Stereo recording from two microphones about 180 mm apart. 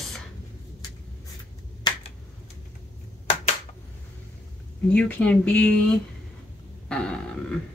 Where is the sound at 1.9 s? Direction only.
25° left (ahead or behind).